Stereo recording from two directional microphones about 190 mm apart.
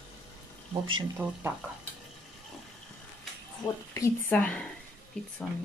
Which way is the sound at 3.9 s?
15° left (ahead or behind).